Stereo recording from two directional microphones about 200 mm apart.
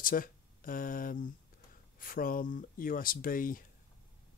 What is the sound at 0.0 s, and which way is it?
Speech, 45° left (ahead or behind).